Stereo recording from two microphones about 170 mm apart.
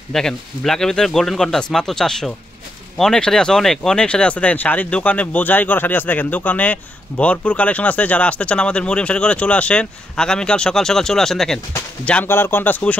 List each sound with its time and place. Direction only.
0.1 s speech: 5° left (ahead or behind)